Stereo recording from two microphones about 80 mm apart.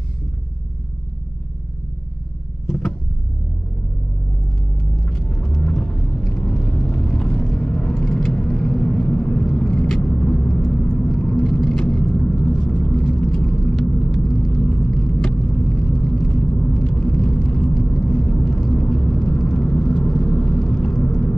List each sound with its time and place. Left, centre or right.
2.6 s vehicle: centre
5.0 s car: centre
5.8 s vehicle: centre
13.1 s rumble: centre
14.1 s vehicle: centre
14.7 s rumble: centre
17.9 s vehicle: centre